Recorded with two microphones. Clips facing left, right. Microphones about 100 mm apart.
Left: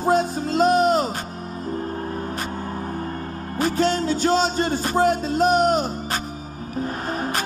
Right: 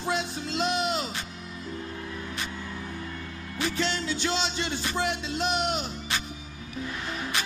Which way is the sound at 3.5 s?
45° left (ahead or behind).